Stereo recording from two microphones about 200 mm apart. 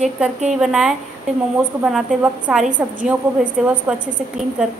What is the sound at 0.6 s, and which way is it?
A woman's voice, 5° right (ahead or behind).